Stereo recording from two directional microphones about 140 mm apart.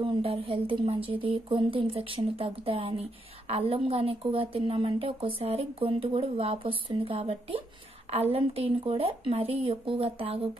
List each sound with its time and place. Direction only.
0.0 s speech: 40° right (ahead or behind)